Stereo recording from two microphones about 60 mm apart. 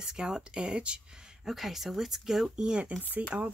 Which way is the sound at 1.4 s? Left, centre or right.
Centre.